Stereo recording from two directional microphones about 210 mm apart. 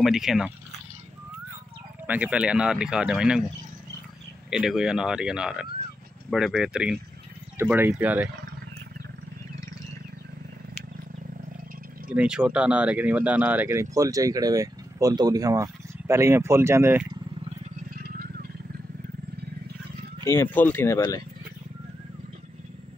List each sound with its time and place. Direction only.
0.0 s speech: centre (ahead or behind)
2.0 s speech: 5° right (ahead or behind)
4.5 s speech: 5° right (ahead or behind)
12.1 s speech: 5° right (ahead or behind)
17.9 s a sound: 45° right (ahead or behind)
20.2 s speech: 10° left (ahead or behind)